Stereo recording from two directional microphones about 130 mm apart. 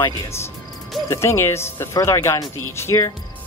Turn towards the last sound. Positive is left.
turn(degrees=20)  # may be behind; listen again after turning